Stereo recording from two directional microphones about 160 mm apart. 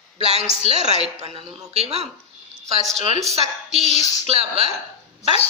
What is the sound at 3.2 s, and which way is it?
A woman's voice, 40° right (ahead or behind).